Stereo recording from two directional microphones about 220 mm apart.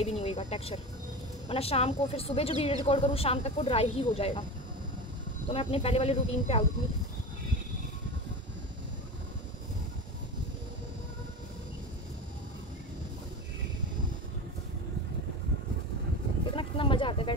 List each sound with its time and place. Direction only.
0.2 s a woman's voice: 30° left (ahead or behind)
5.5 s a woman's voice: 30° left (ahead or behind)
16.5 s a sound: 25° left (ahead or behind)